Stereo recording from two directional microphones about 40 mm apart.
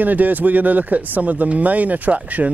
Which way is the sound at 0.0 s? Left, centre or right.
Right.